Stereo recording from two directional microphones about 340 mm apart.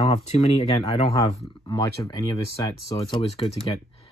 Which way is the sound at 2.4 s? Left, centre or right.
Right.